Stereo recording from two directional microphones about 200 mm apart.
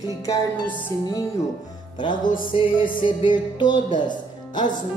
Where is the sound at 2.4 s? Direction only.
25° left (ahead or behind).